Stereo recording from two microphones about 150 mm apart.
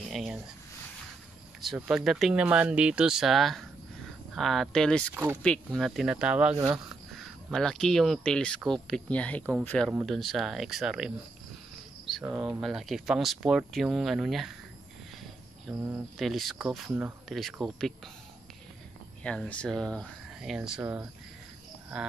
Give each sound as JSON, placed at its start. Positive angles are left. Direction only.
{"t": 0.1, "sound": "speech", "side_deg": 0}
{"t": 1.8, "sound": "speech", "side_deg": -5}
{"t": 5.1, "sound": "speech", "side_deg": -15}
{"t": 5.4, "sound": "speech", "side_deg": 5}
{"t": 12.3, "sound": "speech", "side_deg": -10}
{"t": 15.7, "sound": "speech", "side_deg": -15}
{"t": 16.2, "sound": "speech", "side_deg": 0}
{"t": 19.2, "sound": "speech", "side_deg": 5}
{"t": 20.8, "sound": "speech", "side_deg": -15}